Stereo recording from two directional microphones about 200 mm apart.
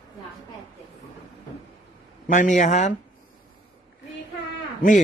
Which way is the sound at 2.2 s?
40° left (ahead or behind).